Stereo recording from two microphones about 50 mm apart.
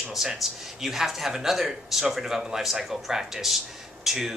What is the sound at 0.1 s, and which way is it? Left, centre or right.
Speech, centre.